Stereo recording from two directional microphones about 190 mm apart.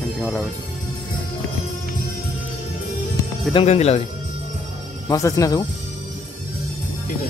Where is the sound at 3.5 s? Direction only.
35° left (ahead or behind).